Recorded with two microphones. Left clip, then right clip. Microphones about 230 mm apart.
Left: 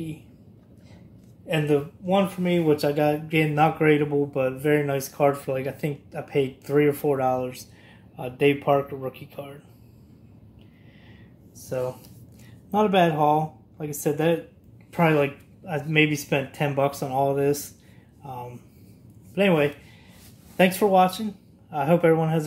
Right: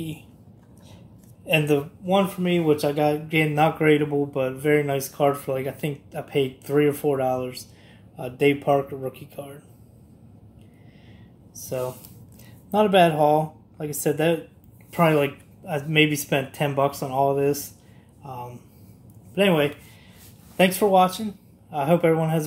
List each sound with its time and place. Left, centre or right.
1.5 s speech: centre
12.7 s speech: centre